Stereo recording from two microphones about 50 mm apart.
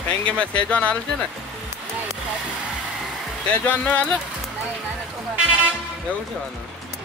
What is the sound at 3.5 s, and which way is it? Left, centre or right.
Speech, left.